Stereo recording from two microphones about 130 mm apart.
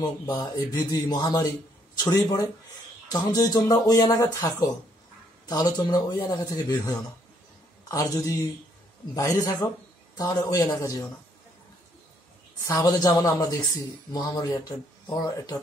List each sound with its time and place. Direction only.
0.0 s speech: 30° left (ahead or behind)
7.9 s speech: 25° left (ahead or behind)
12.6 s speech: 25° left (ahead or behind)